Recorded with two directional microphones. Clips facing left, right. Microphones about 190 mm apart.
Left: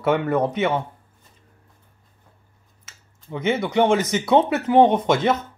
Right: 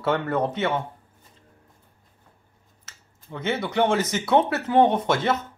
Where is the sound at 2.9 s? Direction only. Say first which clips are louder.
Left 5 dB; 15° left (ahead or behind).